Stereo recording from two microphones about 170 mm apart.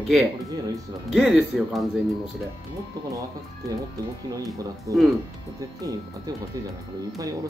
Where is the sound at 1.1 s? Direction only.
Centre (ahead or behind).